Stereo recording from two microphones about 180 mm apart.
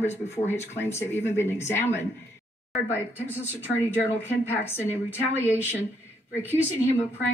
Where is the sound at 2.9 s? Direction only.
10° right (ahead or behind).